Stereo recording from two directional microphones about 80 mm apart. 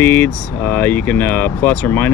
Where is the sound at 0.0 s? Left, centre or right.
Left.